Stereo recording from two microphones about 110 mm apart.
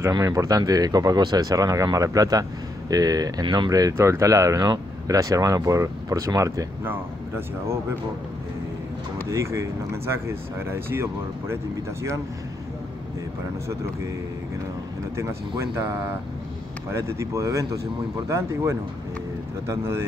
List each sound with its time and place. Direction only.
0.1 s speech: 35° right (ahead or behind)
3.9 s speech: 25° right (ahead or behind)
6.8 s speech: 20° right (ahead or behind)
9.3 s speech: 25° right (ahead or behind)
16.9 s speech: 25° right (ahead or behind)